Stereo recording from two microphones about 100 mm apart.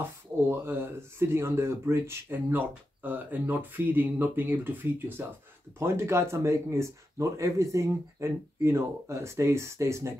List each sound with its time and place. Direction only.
0.0 s speech: 25° right (ahead or behind)